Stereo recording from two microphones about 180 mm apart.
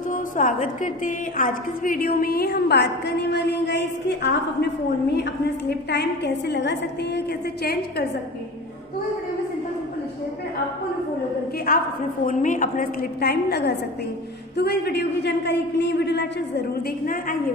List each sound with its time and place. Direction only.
0.1 s a woman's voice: 45° left (ahead or behind); by 8.1 s 65° left (ahead or behind)
11.7 s a woman's voice: 55° left (ahead or behind); by 16.6 s 70° left (ahead or behind)
17.0 s a woman's voice: 50° left (ahead or behind)